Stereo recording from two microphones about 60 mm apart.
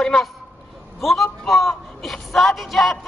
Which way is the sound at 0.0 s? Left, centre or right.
Centre.